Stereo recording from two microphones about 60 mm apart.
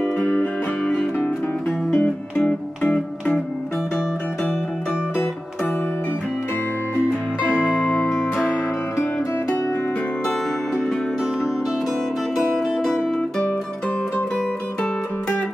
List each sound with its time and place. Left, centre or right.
0.2 s music: left
2.0 s music: left
12.4 s music: centre